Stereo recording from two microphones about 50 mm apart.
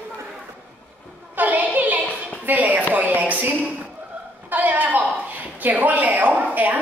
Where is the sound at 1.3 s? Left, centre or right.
Right.